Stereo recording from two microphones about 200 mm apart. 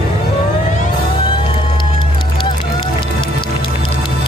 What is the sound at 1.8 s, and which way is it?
Music, 25° left (ahead or behind).